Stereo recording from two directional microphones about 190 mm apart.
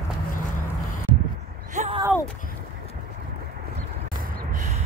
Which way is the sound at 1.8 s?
35° right (ahead or behind).